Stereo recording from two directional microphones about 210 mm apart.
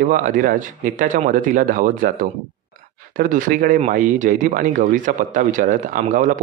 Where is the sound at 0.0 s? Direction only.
40° right (ahead or behind).